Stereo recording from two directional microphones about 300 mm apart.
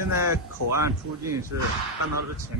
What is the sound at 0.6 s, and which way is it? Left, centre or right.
Speech, right.